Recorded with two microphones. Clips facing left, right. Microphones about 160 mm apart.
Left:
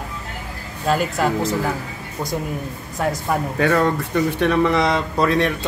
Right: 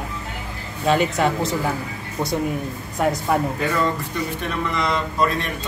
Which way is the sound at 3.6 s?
65° left (ahead or behind).